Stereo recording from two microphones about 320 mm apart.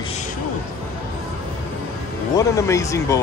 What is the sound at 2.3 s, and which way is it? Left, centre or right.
Speech, centre.